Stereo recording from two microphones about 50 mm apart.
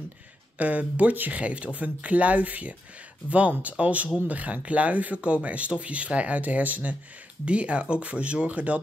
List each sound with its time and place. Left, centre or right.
0.6 s speech: right